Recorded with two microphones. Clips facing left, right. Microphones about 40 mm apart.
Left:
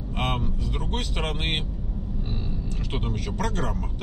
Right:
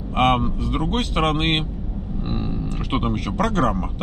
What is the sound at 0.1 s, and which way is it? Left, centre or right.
Speech, right.